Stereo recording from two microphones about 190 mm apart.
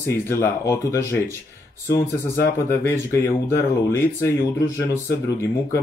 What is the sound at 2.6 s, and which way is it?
Speech, 15° left (ahead or behind).